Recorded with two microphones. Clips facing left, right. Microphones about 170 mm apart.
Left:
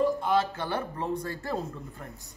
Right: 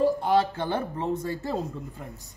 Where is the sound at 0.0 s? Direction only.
30° right (ahead or behind).